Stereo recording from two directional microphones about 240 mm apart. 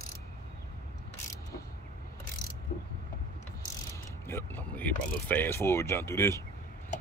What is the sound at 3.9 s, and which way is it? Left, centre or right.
Speech, centre.